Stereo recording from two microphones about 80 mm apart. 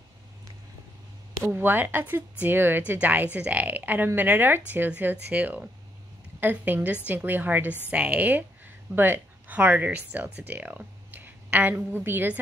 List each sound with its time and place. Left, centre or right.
1.4 s a woman's voice: right